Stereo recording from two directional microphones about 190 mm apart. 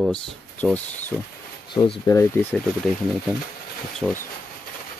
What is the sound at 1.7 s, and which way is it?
Speech, 25° left (ahead or behind).